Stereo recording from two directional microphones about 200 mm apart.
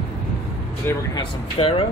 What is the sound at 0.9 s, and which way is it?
Speech, 10° left (ahead or behind).